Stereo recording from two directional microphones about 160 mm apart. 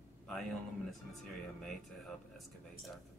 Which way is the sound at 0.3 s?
Centre (ahead or behind).